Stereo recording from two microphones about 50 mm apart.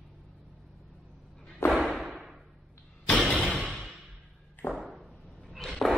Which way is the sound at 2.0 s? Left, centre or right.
Centre.